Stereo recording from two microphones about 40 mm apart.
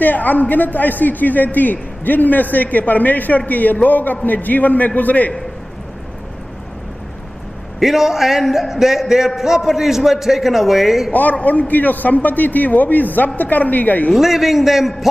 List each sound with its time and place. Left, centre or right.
0.0 s a man's voice: left
7.8 s a man's voice: centre
11.1 s a man's voice: left
14.1 s a man's voice: centre